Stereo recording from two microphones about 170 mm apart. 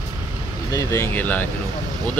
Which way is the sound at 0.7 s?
20° left (ahead or behind).